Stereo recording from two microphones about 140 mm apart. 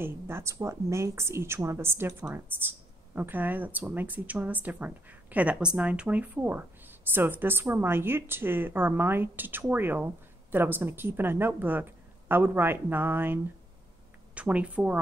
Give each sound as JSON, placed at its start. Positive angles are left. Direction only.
{"t": 0.0, "sound": "a woman's voice", "side_deg": -20}